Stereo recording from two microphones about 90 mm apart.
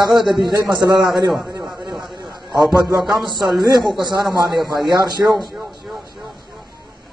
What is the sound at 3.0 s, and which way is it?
Speech, centre (ahead or behind).